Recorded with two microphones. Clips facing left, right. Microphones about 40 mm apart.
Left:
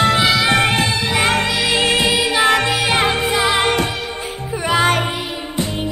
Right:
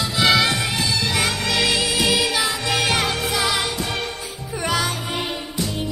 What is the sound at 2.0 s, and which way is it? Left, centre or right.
Music, centre.